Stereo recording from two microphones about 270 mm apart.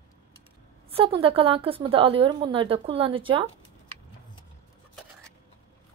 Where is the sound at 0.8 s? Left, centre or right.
Right.